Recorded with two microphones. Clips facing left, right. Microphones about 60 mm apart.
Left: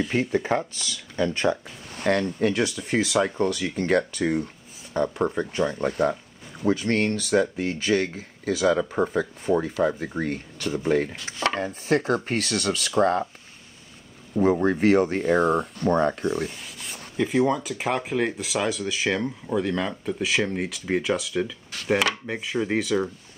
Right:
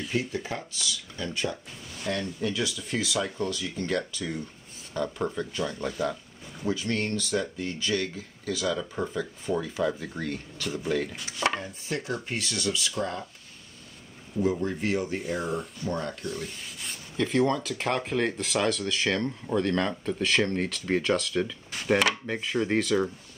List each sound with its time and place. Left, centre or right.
0.1 s speech: left
3.4 s speech: left
4.9 s speech: left
5.9 s speech: left
11.6 s speech: left
14.3 s speech: left
14.6 s speech: left
16.1 s speech: left
17.2 s speech: centre